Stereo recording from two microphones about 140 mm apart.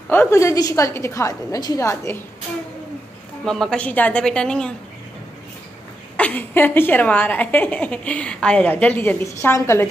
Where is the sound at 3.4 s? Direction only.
5° left (ahead or behind).